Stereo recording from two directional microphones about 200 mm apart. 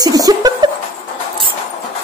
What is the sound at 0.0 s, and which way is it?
Laughter, 20° right (ahead or behind).